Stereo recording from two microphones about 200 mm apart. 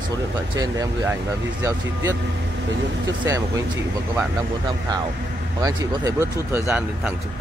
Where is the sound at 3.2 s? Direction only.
15° right (ahead or behind).